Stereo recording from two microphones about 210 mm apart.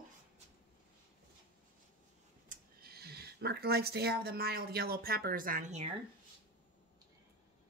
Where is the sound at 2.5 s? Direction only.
45° right (ahead or behind).